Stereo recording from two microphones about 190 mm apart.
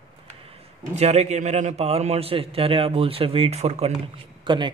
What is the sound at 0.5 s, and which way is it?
A man's voice, 35° right (ahead or behind).